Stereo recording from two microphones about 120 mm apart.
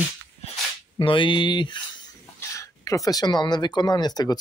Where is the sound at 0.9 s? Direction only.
45° left (ahead or behind).